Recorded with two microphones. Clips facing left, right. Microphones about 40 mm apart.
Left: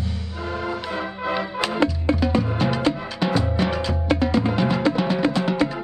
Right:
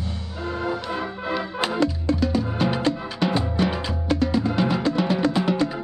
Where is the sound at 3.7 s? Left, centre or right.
Centre.